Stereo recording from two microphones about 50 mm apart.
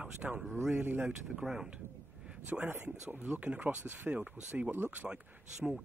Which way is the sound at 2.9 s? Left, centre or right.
Centre.